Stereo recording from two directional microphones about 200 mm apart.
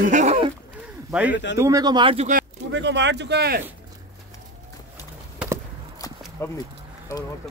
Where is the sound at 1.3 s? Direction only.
65° left (ahead or behind).